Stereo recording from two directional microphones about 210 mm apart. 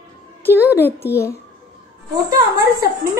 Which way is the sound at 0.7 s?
10° left (ahead or behind).